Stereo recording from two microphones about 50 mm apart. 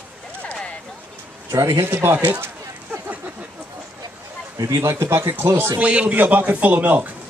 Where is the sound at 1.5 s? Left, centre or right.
Right.